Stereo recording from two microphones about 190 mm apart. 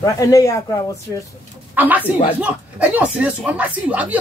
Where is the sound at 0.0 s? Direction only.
20° left (ahead or behind).